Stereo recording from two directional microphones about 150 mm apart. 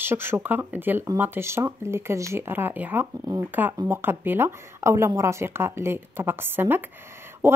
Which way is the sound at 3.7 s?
25° right (ahead or behind).